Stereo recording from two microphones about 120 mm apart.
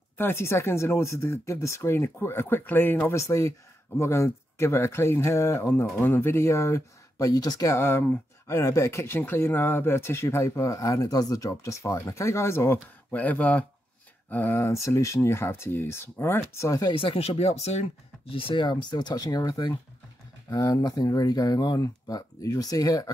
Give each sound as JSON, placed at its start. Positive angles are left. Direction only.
{"t": 0.2, "sound": "speech", "side_deg": 20}
{"t": 16.9, "sound": "speech", "side_deg": 50}